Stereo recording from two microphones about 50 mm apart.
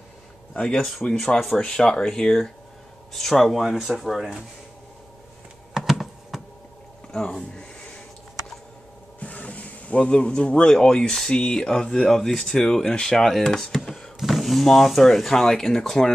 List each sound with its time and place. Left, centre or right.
0.6 s speech: left
0.8 s speech: centre
1.6 s speech: centre
5.8 s computer keyboard: centre
7.1 s speech: centre
9.2 s speech: left; by 13.7 s centre
13.8 s beatboxing: centre
14.2 s speech: centre